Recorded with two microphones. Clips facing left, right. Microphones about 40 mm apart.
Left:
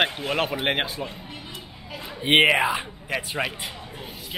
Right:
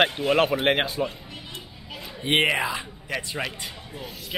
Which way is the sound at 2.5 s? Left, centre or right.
Left.